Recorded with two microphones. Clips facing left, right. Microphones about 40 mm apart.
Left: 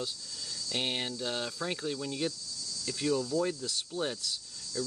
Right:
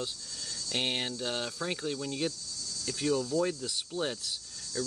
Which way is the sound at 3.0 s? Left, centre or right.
Centre.